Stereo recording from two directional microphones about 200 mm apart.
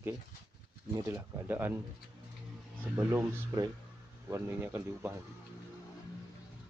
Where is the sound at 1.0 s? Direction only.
10° right (ahead or behind).